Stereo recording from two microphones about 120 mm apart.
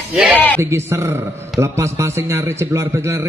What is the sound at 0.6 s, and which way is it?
A man's voice, 20° right (ahead or behind).